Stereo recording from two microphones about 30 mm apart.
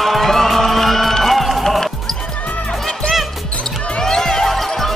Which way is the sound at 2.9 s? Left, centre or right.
Left.